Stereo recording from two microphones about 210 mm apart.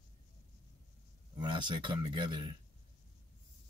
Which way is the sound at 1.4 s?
20° right (ahead or behind).